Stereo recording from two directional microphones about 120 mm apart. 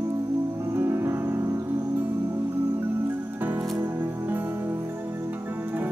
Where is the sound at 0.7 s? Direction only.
20° right (ahead or behind).